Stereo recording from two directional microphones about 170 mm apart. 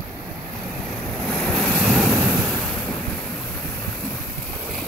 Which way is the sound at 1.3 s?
Centre (ahead or behind).